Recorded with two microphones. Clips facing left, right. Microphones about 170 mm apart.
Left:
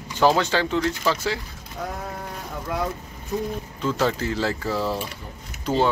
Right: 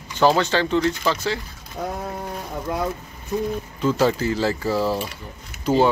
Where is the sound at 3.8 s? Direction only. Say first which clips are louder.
Right 4 dB; 5° right (ahead or behind).